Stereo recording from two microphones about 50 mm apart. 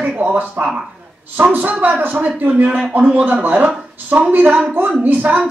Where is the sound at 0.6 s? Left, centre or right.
Right.